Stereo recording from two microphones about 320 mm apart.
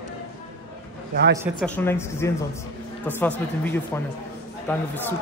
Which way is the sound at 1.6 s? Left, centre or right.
Centre.